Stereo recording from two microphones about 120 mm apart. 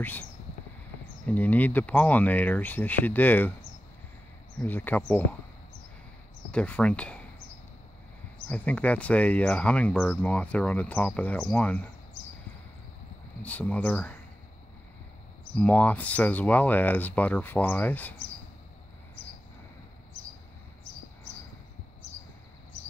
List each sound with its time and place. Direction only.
0.0 s speech: 15° left (ahead or behind)
4.6 s speech: 15° left (ahead or behind)
6.5 s speech: 10° left (ahead or behind)
8.5 s speech: 10° left (ahead or behind)
13.4 s speech: 10° left (ahead or behind)
15.5 s speech: 10° left (ahead or behind)